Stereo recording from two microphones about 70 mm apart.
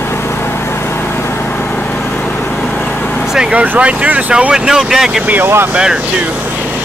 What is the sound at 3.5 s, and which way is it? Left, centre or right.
Speech, right.